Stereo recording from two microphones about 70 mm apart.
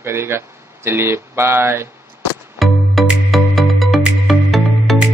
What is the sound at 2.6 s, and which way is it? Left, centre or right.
Music, centre.